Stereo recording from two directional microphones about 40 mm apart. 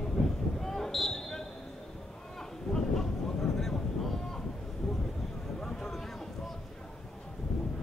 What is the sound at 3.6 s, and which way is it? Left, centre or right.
Wind noise, centre.